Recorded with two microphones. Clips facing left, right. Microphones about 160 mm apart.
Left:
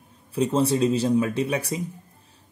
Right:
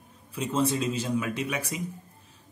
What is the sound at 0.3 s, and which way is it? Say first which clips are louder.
Speech: left 5 dB; 35° left (ahead or behind).